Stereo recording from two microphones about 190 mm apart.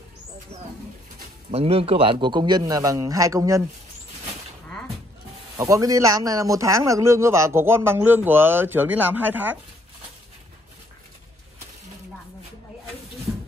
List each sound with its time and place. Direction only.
1.5 s a man's voice: 30° right (ahead or behind)
5.6 s a man's voice: 15° right (ahead or behind)